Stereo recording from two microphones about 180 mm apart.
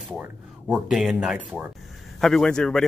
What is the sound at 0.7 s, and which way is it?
Speech, 5° right (ahead or behind).